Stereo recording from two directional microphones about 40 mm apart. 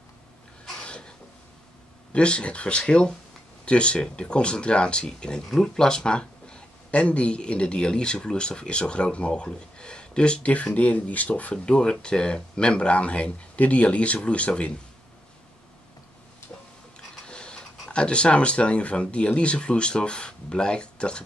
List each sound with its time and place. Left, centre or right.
0.7 s a sound: left
2.1 s speech: left
11.5 s speech: left
17.1 s speech: left